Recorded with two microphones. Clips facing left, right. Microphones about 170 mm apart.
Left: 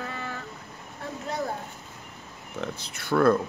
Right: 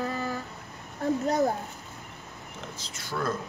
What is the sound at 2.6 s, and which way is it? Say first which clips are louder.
Speech: left 9 dB; 60° left (ahead or behind).